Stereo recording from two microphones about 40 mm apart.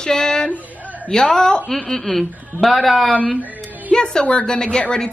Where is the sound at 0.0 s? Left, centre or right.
Centre.